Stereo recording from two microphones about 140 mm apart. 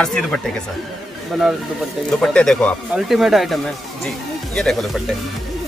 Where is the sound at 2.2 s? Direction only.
5° left (ahead or behind).